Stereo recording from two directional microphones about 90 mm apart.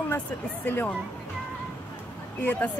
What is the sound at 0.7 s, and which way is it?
Speech, 20° left (ahead or behind).